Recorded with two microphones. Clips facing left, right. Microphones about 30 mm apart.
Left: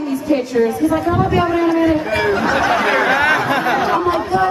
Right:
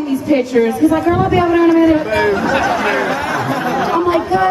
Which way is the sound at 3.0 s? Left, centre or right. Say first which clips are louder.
Left 3 dB; left.